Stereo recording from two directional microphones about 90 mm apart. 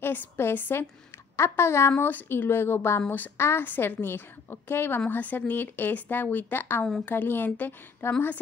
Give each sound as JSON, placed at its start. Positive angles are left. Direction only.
{"t": 0.0, "sound": "a woman's voice", "side_deg": 25}